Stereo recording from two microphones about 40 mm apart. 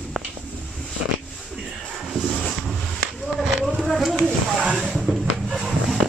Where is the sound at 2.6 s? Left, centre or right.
Centre.